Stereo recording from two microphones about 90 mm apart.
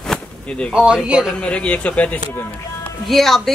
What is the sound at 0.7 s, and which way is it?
Speech, 10° right (ahead or behind).